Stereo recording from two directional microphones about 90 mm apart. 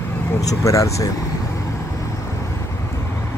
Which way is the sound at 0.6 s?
35° left (ahead or behind).